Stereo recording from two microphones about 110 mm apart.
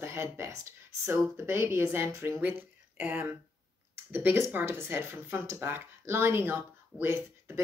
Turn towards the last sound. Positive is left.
turn(degrees=-20)  # may be behind; listen again after turning